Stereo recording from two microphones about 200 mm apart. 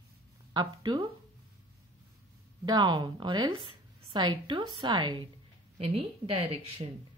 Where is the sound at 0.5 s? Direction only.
20° right (ahead or behind).